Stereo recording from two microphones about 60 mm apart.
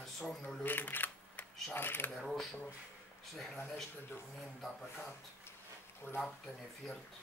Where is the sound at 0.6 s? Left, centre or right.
Left.